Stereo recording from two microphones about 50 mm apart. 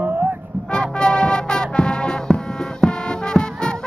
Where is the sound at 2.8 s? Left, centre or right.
Centre.